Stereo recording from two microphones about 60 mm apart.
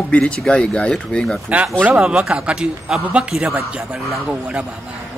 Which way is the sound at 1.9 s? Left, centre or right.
Centre.